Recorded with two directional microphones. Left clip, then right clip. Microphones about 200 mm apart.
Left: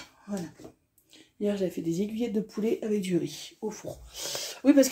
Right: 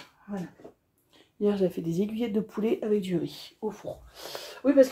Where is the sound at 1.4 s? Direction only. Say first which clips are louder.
Right 3 dB; 10° right (ahead or behind).